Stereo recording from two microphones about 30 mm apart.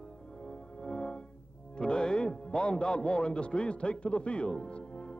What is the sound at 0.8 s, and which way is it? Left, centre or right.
Organ, left.